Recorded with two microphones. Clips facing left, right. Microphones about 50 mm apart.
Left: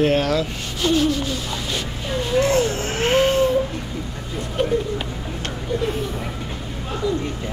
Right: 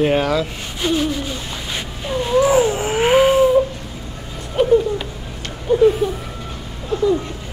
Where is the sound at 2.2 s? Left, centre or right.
Centre.